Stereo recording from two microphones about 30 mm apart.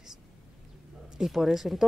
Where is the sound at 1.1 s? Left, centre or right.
Centre.